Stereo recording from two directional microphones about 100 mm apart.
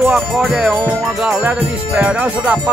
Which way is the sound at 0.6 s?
15° right (ahead or behind).